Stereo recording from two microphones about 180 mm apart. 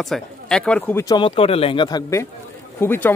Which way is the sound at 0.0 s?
Centre (ahead or behind).